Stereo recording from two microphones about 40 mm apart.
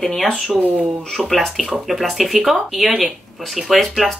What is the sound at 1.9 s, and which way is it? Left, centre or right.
A woman's voice, centre.